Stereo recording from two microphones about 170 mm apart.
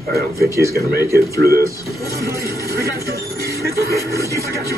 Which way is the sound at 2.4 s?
65° right (ahead or behind).